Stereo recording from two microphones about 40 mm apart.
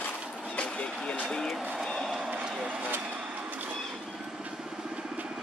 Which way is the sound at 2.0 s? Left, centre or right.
Centre.